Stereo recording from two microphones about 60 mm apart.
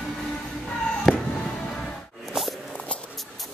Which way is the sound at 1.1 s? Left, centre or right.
Centre.